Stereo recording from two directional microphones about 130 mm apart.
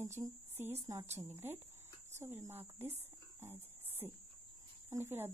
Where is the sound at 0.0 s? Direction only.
20° right (ahead or behind).